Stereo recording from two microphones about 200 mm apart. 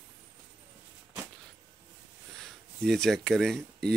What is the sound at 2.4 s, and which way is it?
Speech, centre (ahead or behind).